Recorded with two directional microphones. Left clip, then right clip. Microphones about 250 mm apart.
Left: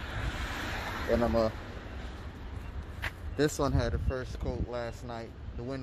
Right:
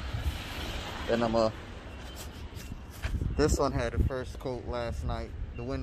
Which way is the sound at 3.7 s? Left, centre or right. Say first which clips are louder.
Right 1 dB; right.